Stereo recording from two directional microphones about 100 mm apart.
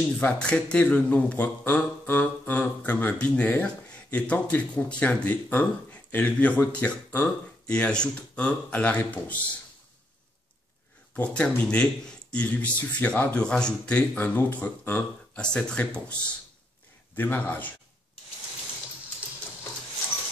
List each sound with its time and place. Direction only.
0.2 s speech: 10° left (ahead or behind)
11.1 s speech: 10° left (ahead or behind)